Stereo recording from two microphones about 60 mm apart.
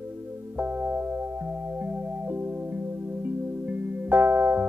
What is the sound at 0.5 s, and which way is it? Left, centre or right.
Music, right.